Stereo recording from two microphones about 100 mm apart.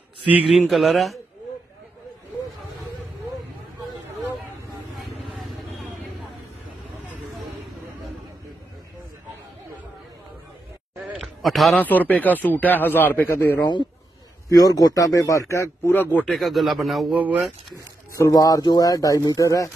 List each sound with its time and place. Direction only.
0.3 s a man's voice: 15° right (ahead or behind)
0.7 s speech: centre (ahead or behind)
4.9 s vehicle: centre (ahead or behind)
11.4 s speech: centre (ahead or behind)
11.7 s speech: 15° left (ahead or behind)
14.5 s speech: 40° left (ahead or behind)
15.9 s speech: 20° left (ahead or behind)
16.3 s speech: centre (ahead or behind)
17.1 s a man's voice: 15° right (ahead or behind)
18.1 s speech: 35° left (ahead or behind)